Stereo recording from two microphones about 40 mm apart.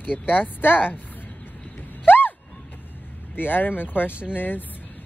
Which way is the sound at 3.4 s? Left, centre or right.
Left.